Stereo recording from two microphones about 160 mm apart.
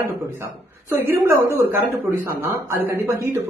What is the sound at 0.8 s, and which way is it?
A man's voice, 15° right (ahead or behind).